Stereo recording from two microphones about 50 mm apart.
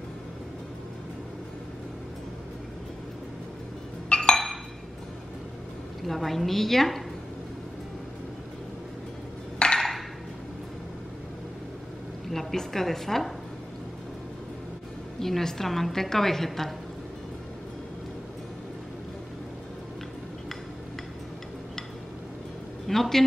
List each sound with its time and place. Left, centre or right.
4.1 s glass: centre
6.0 s a woman's voice: centre
9.8 s a sound: centre
12.3 s a woman's voice: centre
15.1 s a woman's voice: centre
22.8 s a woman's voice: centre